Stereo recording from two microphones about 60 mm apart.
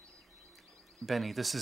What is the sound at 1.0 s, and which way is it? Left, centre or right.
Speech, centre.